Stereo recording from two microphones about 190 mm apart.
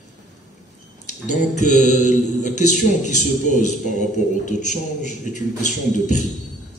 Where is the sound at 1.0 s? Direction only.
40° left (ahead or behind).